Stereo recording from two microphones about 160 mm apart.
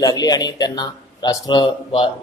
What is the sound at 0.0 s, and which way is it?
Speech, 25° left (ahead or behind).